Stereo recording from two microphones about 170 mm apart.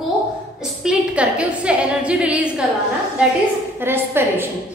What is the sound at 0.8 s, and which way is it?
A woman's voice, 5° right (ahead or behind).